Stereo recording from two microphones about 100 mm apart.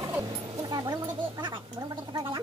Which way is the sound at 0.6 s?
40° right (ahead or behind).